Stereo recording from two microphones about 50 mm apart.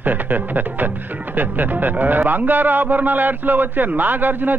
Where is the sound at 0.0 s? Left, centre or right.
Right.